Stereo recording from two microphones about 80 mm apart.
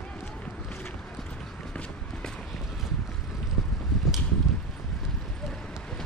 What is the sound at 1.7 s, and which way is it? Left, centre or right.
Run, centre.